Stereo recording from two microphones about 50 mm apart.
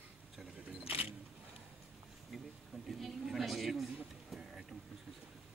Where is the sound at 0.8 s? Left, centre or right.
Right.